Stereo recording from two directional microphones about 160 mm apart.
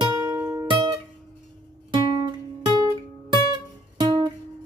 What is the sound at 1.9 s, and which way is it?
Guitar, 30° right (ahead or behind).